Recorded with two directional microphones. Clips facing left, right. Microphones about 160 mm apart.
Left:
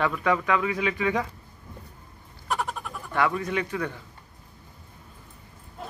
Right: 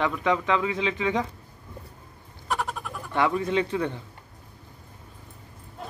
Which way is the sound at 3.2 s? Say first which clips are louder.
Right 2 dB; 25° right (ahead or behind).